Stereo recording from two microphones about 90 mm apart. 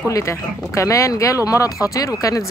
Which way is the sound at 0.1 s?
35° left (ahead or behind).